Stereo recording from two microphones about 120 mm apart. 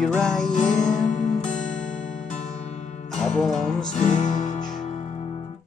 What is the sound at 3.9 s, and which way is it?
Music, 90° left.